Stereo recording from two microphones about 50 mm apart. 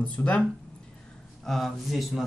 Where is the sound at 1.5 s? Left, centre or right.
Centre.